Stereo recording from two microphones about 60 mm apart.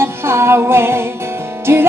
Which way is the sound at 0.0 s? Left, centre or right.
Right.